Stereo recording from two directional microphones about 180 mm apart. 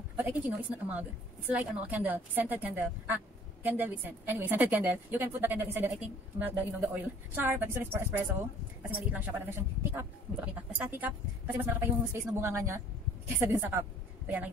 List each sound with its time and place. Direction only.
0.1 s a woman's voice: 10° right (ahead or behind)